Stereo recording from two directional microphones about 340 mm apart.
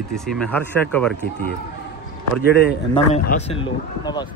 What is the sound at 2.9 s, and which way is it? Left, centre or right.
Speech, centre.